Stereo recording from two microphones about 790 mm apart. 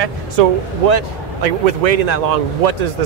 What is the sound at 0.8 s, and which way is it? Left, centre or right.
Speech, right.